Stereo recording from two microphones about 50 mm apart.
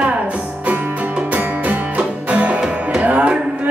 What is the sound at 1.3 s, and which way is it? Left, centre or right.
Music, right.